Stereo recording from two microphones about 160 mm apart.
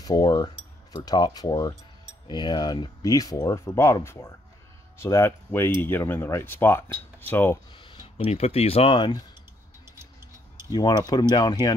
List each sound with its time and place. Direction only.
0.0 s cutlery: 25° left (ahead or behind)
1.0 s speech: 25° left (ahead or behind)
7.7 s a sound: 30° left (ahead or behind)
8.2 s speech: 40° left (ahead or behind)
10.7 s speech: 25° left (ahead or behind)